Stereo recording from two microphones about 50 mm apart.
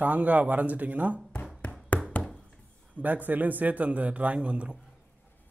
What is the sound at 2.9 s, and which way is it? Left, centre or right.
A man's voice, right.